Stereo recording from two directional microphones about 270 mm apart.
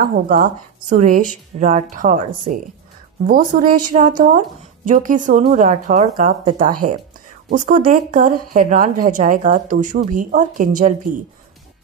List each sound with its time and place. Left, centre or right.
0.0 s a woman's voice: right